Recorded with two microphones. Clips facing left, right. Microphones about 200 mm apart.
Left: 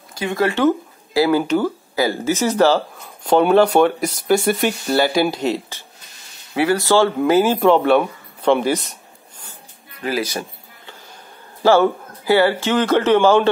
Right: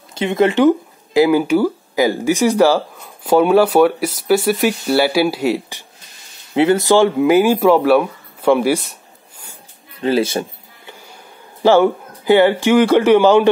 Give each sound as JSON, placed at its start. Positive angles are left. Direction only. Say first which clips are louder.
{"t": 0.1, "sound": "speech", "louder": "right 5 dB", "side_deg": -20}
{"t": 9.9, "sound": "speech", "louder": "right 6 dB", "side_deg": -25}
{"t": 11.6, "sound": "speech", "louder": "right 2 dB", "side_deg": -15}